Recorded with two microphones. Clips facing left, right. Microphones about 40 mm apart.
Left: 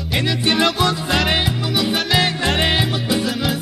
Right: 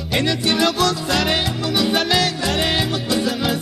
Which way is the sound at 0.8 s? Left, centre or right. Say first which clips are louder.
Even; left.